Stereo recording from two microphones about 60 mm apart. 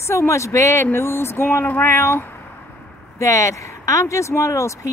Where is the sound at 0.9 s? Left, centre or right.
Left.